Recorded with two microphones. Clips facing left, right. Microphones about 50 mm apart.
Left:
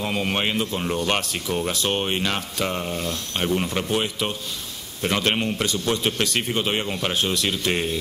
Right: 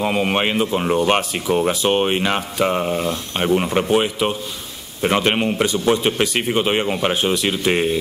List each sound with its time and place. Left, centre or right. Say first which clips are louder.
0.0 s speech: right 6 dB; centre